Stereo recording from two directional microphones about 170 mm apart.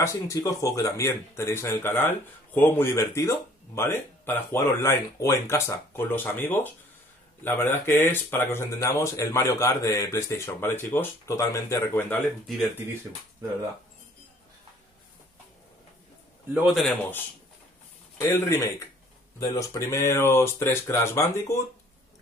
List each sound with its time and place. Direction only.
0.0 s speech: 20° left (ahead or behind)
16.6 s speech: centre (ahead or behind)
18.2 s speech: 15° left (ahead or behind)